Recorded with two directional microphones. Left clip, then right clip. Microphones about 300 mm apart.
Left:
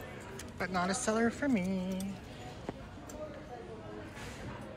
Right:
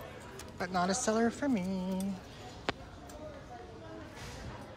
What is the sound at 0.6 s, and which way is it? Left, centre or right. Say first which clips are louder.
A woman's voice: right 2 dB; centre.